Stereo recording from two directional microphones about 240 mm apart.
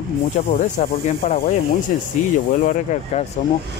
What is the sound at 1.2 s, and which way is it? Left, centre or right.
Speech, left.